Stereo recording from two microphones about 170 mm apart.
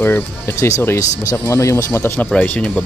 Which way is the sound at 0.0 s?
15° left (ahead or behind).